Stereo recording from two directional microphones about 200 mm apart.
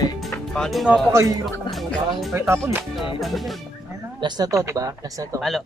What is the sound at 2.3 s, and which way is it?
Speech, 15° right (ahead or behind).